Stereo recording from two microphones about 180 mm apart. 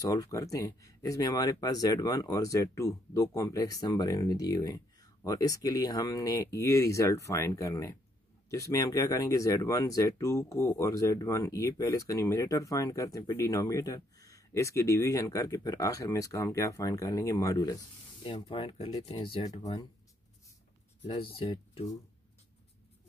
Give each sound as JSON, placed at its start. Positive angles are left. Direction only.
{"t": 0.0, "sound": "speech", "side_deg": 20}
{"t": 21.1, "sound": "speech", "side_deg": 30}